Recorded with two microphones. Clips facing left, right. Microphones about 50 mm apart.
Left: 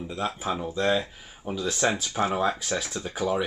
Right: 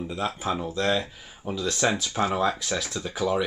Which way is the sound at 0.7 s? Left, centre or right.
Centre.